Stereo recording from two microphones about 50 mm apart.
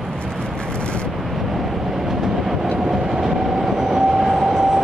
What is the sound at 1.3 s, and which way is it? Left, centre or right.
Vehicle, centre.